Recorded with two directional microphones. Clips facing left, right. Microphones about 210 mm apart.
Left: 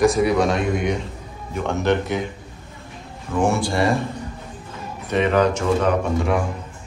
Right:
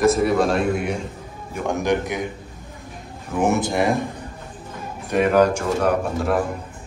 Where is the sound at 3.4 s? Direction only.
20° right (ahead or behind).